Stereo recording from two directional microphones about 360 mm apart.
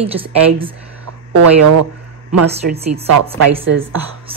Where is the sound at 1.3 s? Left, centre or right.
Right.